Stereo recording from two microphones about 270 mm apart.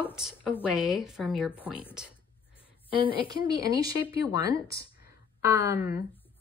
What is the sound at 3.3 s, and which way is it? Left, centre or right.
Speech, centre.